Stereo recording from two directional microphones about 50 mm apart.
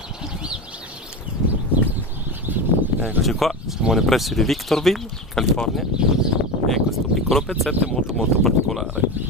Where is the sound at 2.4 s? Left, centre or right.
Right.